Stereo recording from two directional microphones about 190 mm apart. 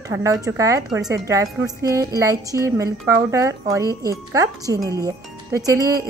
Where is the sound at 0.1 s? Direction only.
15° right (ahead or behind).